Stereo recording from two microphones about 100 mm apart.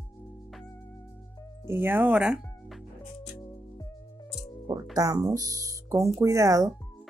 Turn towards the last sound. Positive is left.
turn(degrees=-30)  # may be behind; listen again after turning